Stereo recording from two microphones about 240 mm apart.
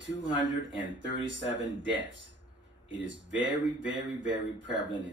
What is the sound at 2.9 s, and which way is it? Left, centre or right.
Speech, right.